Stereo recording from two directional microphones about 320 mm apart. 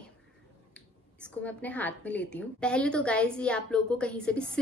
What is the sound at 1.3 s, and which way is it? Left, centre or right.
A woman's voice, centre.